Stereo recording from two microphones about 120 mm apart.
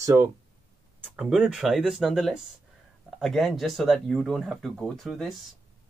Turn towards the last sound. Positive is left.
turn(degrees=0)  # may be behind; listen again after turning